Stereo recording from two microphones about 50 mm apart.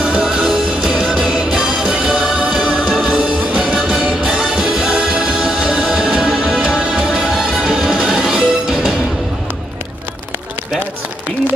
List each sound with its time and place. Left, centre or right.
0.0 s music: centre